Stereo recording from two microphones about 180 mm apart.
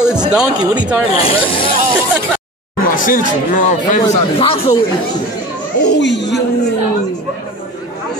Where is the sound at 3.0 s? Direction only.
45° left (ahead or behind).